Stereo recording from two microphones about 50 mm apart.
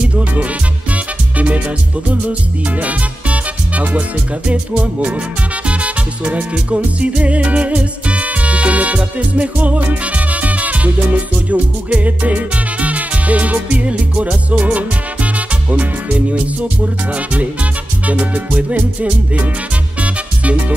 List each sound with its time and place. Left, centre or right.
0.0 s music: right
2.8 s music: right